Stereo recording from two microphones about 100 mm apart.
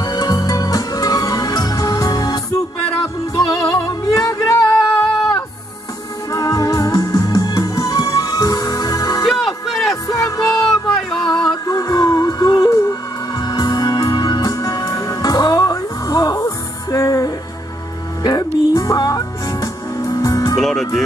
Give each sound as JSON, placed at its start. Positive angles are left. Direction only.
{"t": 0.0, "sound": "music", "side_deg": 40}
{"t": 6.3, "sound": "music", "side_deg": 35}
{"t": 9.7, "sound": "music", "side_deg": 0}
{"t": 10.0, "sound": "music", "side_deg": 35}
{"t": 10.6, "sound": "music", "side_deg": 5}
{"t": 11.6, "sound": "music", "side_deg": 35}
{"t": 20.5, "sound": "music", "side_deg": 5}